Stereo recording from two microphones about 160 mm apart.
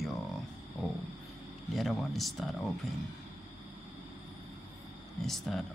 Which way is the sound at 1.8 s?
Centre (ahead or behind).